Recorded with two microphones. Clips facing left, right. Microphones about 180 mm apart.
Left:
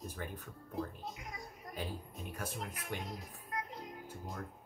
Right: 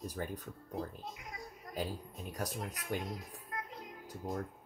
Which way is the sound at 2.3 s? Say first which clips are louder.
Right 3 dB; 40° right (ahead or behind).